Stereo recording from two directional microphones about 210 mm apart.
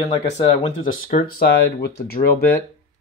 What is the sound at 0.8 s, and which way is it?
Speech, 40° left (ahead or behind).